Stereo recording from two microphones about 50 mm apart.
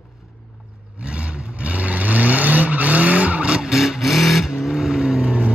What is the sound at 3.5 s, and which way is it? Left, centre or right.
Vehicle, centre.